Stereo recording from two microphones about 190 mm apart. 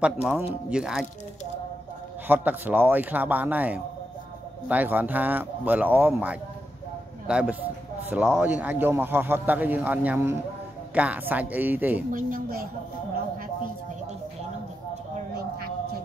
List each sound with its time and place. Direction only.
0.0 s speech: 5° right (ahead or behind)
2.2 s a man's voice: 10° right (ahead or behind)
12.1 s speech: 45° right (ahead or behind)